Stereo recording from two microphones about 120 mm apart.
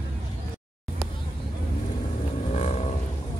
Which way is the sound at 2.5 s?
65° left (ahead or behind).